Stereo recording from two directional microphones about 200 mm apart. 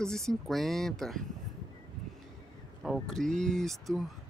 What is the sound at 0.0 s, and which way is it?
Speech, 5° left (ahead or behind).